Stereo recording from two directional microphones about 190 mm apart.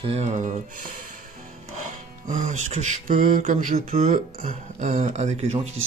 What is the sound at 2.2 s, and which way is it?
Speech, 40° right (ahead or behind).